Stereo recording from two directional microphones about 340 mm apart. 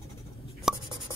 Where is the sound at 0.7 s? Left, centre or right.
Centre.